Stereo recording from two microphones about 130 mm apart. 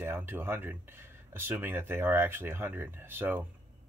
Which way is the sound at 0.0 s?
15° right (ahead or behind).